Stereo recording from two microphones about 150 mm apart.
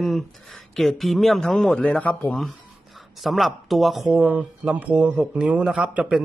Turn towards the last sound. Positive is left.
turn(degrees=-5)  # may be behind; listen again after turning